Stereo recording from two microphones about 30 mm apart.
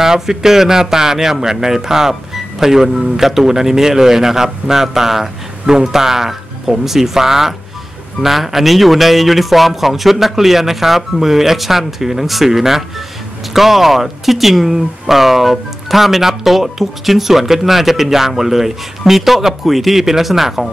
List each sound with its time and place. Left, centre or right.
0.0 s speech: centre